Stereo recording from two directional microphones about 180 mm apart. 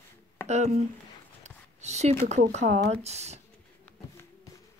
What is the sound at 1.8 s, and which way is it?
A woman's voice, 40° right (ahead or behind).